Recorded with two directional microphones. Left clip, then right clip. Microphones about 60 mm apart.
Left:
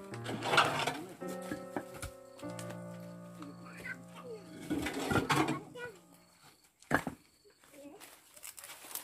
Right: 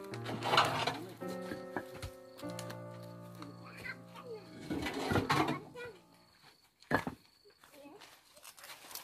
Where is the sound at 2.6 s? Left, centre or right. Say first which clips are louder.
Even; centre.